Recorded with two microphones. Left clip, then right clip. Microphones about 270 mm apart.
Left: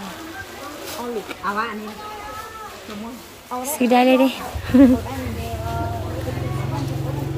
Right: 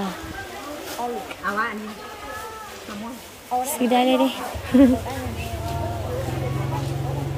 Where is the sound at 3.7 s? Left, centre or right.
Centre.